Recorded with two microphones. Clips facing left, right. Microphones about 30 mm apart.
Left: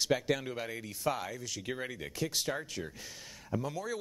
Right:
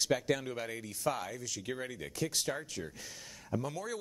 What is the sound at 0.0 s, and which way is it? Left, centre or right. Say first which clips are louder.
Speech: left 1 dB; centre.